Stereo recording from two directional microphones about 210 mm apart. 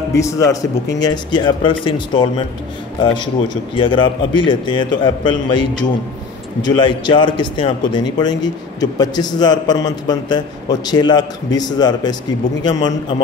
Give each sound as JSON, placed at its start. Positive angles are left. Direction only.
{"t": 0.1, "sound": "a man's voice", "side_deg": 15}
{"t": 6.8, "sound": "a man's voice", "side_deg": 20}